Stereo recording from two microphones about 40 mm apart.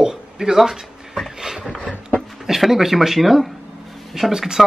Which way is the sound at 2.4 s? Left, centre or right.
Centre.